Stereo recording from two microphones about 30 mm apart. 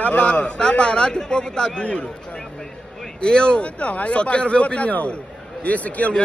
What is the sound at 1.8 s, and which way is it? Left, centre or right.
Speech, left.